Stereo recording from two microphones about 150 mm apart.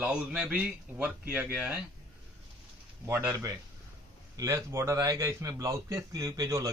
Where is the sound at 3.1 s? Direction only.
15° right (ahead or behind).